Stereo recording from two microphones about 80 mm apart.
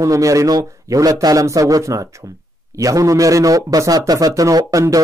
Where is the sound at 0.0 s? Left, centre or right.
Right.